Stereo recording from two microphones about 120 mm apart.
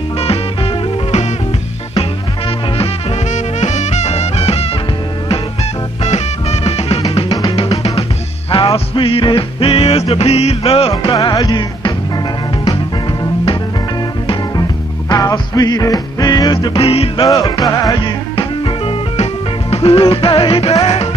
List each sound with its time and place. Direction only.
3.6 s music: 75° left (ahead or behind)
6.0 s music: 65° left (ahead or behind)
10.9 s music: 35° left (ahead or behind)
14.6 s music: 30° left (ahead or behind)
16.8 s music: 55° left (ahead or behind)
17.3 s music: 30° left (ahead or behind); by 21.1 s 50° left (ahead or behind)